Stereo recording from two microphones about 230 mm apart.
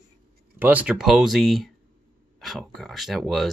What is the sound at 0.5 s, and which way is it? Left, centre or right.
Speech, centre.